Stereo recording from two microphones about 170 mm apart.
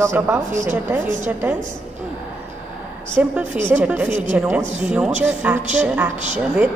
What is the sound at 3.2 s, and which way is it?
Speech, 10° right (ahead or behind).